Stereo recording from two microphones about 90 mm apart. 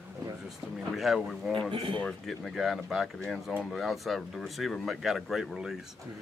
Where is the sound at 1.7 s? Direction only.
70° right (ahead or behind).